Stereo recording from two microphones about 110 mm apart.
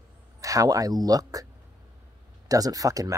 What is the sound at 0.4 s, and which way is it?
Speech, 30° right (ahead or behind).